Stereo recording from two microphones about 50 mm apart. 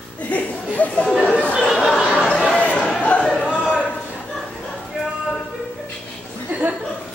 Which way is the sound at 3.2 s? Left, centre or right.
Centre.